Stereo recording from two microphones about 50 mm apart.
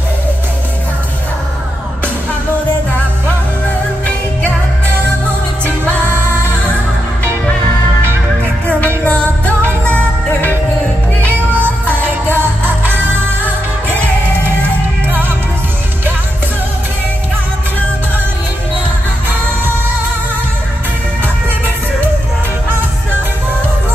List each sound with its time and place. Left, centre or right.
5.9 s music: right
11.8 s music: right